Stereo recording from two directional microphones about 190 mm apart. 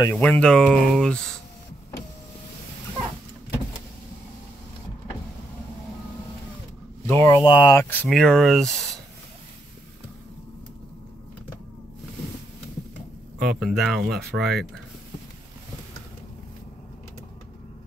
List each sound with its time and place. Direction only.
0.0 s speech: 10° left (ahead or behind)
7.1 s speech: 15° left (ahead or behind)
7.9 s speech: 5° left (ahead or behind)
13.4 s speech: centre (ahead or behind)